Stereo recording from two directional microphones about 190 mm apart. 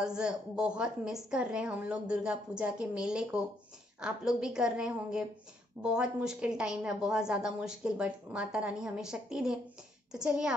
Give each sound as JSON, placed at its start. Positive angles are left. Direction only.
{"t": 0.0, "sound": "a woman's voice", "side_deg": -5}